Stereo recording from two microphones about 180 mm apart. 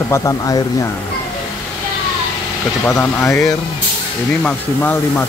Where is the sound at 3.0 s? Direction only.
15° left (ahead or behind).